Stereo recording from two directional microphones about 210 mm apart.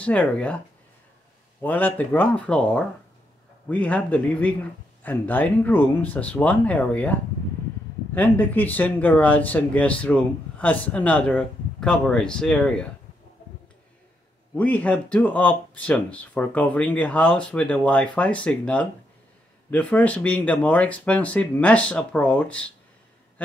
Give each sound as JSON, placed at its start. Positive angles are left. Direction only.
{"t": 0.0, "sound": "speech", "side_deg": 5}
{"t": 1.6, "sound": "speech", "side_deg": 10}
{"t": 14.5, "sound": "speech", "side_deg": 5}